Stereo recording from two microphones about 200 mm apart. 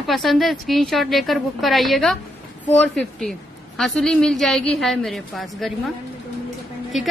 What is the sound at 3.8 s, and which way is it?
Speech, centre (ahead or behind).